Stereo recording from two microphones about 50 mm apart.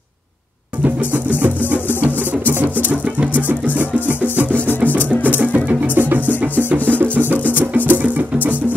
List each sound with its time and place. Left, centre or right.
2.0 s music: right